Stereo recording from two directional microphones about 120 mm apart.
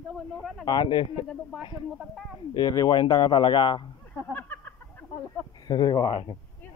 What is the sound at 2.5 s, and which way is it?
Speech, 35° left (ahead or behind).